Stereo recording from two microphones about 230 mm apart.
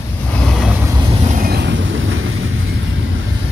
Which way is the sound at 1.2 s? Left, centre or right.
Right.